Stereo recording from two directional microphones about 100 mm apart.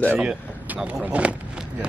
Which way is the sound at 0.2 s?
5° right (ahead or behind).